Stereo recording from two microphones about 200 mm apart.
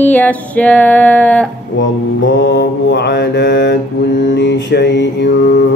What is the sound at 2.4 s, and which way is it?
Mantra, 60° left (ahead or behind).